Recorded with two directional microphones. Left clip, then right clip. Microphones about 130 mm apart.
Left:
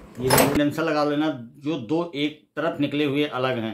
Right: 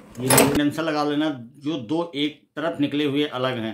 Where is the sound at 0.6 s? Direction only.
15° right (ahead or behind).